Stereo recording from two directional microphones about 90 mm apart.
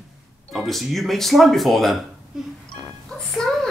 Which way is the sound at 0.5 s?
Centre (ahead or behind).